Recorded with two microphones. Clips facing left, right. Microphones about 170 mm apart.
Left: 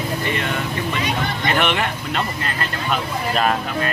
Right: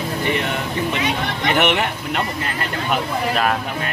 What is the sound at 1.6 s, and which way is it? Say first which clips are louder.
Speech: right 3 dB; 15° right (ahead or behind).